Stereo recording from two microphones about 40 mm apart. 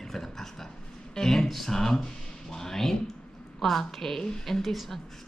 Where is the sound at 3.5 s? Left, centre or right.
Centre.